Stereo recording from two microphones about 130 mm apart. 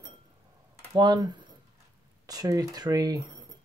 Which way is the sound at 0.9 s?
35° right (ahead or behind).